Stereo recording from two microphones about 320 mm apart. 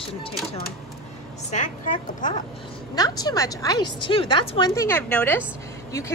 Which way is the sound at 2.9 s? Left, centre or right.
Centre.